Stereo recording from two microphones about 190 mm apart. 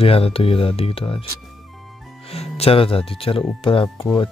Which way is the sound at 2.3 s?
30° left (ahead or behind).